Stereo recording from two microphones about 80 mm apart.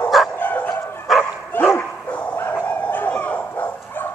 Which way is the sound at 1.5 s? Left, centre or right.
Left.